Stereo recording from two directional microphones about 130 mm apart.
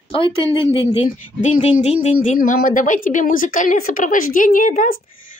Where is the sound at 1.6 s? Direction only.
55° left (ahead or behind).